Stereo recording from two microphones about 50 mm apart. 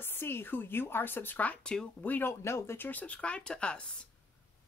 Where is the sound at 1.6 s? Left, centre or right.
Centre.